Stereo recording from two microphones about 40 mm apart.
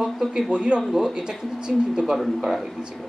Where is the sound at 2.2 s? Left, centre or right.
Centre.